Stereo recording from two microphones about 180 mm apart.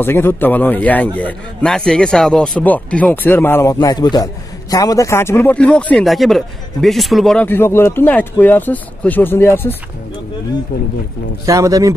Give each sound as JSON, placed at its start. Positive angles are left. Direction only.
{"t": 0.0, "sound": "a man's voice", "side_deg": 10}
{"t": 11.4, "sound": "speech", "side_deg": -15}